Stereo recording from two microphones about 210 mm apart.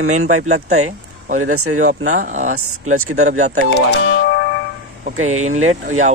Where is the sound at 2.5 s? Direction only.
90° right.